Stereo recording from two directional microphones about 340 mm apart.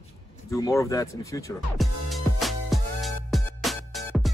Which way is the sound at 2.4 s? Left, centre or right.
Centre.